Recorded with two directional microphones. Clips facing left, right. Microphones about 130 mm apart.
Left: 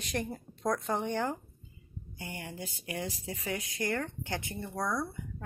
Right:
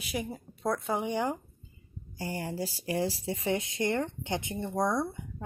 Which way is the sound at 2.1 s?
35° right (ahead or behind).